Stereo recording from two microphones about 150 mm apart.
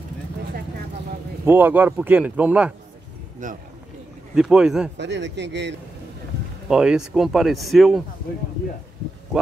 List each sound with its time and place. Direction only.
1.4 s speech: 15° right (ahead or behind)
3.4 s speech: 55° right (ahead or behind)
4.4 s speech: 5° right (ahead or behind)
6.7 s speech: 5° right (ahead or behind)